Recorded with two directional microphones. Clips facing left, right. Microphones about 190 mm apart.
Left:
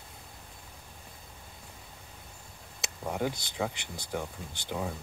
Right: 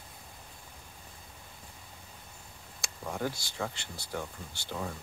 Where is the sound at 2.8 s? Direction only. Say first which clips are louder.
Left 3 dB; 20° left (ahead or behind).